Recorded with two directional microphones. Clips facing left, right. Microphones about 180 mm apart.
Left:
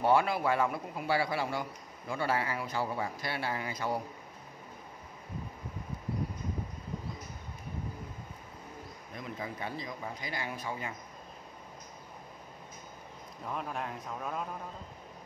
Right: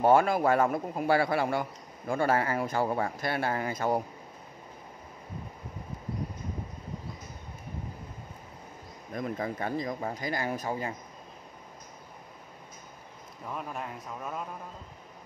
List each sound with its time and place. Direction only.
0.0 s a man's voice: 45° right (ahead or behind)
9.1 s a man's voice: 50° right (ahead or behind)
13.5 s a man's voice: centre (ahead or behind)